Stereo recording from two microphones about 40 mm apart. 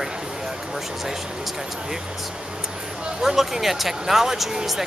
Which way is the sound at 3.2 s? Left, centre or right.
Centre.